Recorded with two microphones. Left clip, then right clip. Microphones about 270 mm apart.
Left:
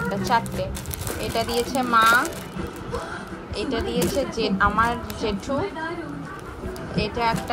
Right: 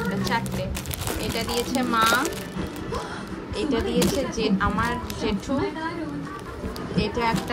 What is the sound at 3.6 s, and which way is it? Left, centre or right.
Music, centre.